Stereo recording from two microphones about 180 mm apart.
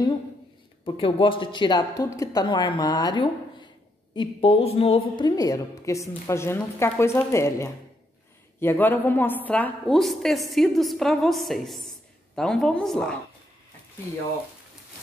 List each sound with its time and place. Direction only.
0.8 s a woman's voice: 30° left (ahead or behind); by 13.2 s 5° left (ahead or behind)